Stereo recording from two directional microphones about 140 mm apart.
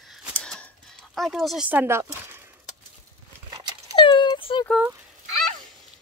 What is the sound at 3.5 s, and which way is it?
Dog, 25° right (ahead or behind).